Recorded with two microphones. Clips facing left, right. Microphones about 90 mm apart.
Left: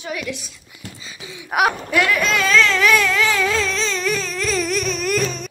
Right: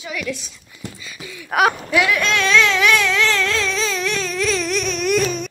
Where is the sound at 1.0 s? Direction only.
20° left (ahead or behind).